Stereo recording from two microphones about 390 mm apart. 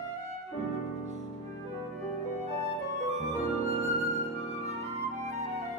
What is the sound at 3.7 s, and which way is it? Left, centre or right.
Music, centre.